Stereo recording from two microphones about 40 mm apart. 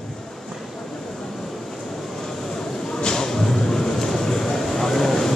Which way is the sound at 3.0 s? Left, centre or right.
Centre.